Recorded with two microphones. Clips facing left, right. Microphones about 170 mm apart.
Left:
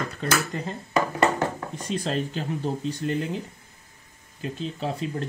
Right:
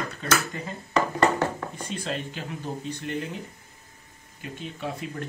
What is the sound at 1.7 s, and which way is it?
Speech, 35° left (ahead or behind).